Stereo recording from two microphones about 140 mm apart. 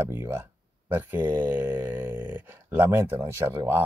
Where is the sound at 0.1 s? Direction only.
15° right (ahead or behind).